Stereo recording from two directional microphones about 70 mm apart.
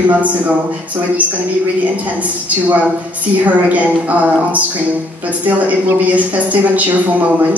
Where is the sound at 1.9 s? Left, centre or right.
Right.